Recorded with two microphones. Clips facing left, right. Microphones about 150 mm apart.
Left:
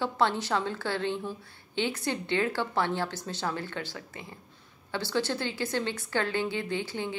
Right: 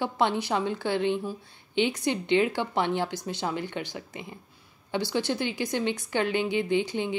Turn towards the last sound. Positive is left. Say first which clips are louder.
# right 6 dB
turn(degrees=-20)  # may be behind; listen again after turning